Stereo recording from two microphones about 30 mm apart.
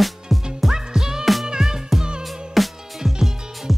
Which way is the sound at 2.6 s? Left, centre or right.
Centre.